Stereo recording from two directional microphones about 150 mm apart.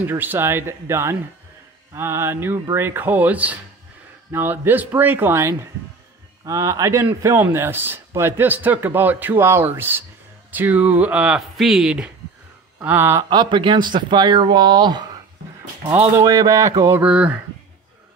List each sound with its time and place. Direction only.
0.0 s speech: 15° right (ahead or behind)
13.2 s speech: 30° right (ahead or behind)
15.9 s speech: 15° right (ahead or behind)
17.0 s speech: 10° right (ahead or behind)